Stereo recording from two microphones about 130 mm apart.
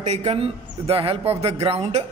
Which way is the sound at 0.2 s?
50° right (ahead or behind).